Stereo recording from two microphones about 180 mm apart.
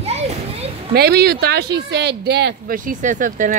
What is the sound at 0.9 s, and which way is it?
Speech, 60° right (ahead or behind).